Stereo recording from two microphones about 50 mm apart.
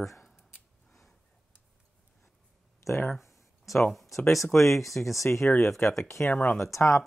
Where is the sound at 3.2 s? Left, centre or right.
Left.